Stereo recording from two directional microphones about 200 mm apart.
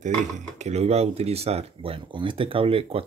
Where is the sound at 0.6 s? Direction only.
35° right (ahead or behind).